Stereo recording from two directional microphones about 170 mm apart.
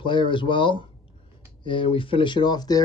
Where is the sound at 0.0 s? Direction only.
30° left (ahead or behind).